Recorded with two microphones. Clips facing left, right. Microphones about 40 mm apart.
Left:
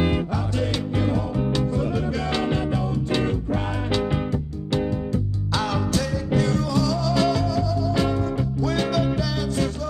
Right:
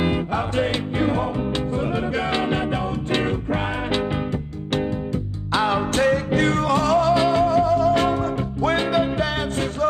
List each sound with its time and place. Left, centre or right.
0.0 s music: right
5.5 s music: right
5.9 s music: right
7.2 s music: right